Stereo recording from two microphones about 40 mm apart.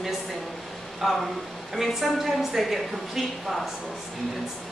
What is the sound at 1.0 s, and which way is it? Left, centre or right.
A woman's voice, centre.